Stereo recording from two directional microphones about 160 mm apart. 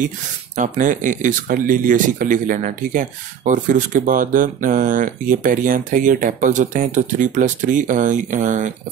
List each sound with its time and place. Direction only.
0.6 s speech: 55° right (ahead or behind)